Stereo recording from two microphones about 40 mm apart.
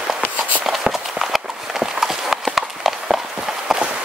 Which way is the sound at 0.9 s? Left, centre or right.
Centre.